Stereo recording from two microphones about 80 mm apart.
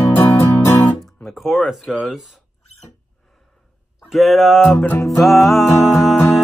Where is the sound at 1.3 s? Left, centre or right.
Centre.